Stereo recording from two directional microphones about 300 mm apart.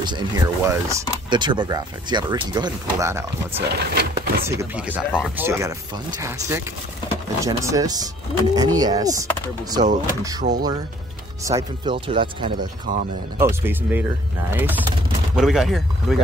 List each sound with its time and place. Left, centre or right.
0.0 s speech: centre
3.7 s speech: right
4.5 s speech: centre
10.4 s speech: right
11.4 s speech: centre